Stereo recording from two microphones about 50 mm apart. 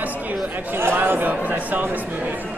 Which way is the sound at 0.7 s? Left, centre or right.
Right.